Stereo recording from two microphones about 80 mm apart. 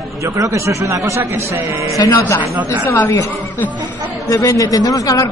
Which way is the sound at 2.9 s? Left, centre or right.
Left.